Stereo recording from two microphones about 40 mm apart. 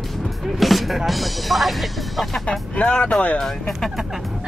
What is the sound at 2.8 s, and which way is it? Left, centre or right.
Speech, left.